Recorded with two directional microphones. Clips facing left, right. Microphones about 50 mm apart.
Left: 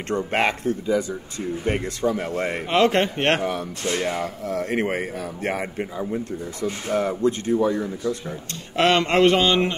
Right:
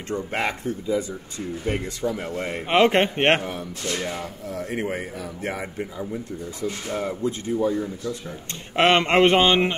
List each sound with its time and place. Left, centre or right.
0.1 s a man's voice: left
2.2 s a man's voice: left
2.7 s a man's voice: right
3.9 s speech: left
4.2 s a man's voice: left
7.0 s speech: left
8.7 s a man's voice: right